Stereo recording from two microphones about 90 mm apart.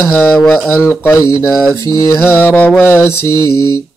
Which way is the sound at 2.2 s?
20° left (ahead or behind).